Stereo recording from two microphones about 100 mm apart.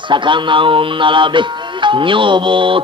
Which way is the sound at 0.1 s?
55° right (ahead or behind).